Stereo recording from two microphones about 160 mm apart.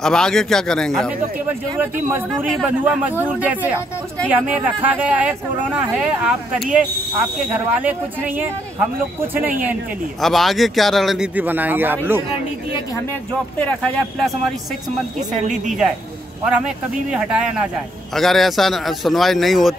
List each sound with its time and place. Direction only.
0.0 s speech: 5° left (ahead or behind)
1.8 s speech: 15° right (ahead or behind)
10.2 s speech: centre (ahead or behind)
13.6 s speech: 5° left (ahead or behind)
15.1 s speech: 50° right (ahead or behind)
16.4 s speech: 5° right (ahead or behind)